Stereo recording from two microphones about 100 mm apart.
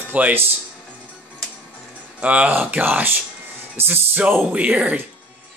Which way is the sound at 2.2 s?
15° right (ahead or behind).